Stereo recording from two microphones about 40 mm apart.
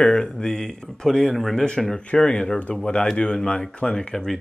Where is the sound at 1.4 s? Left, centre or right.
Centre.